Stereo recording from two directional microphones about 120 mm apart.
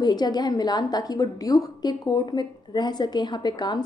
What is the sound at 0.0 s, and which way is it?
A woman's voice, 35° left (ahead or behind).